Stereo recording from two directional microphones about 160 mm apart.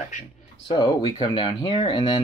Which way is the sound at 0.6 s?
35° left (ahead or behind).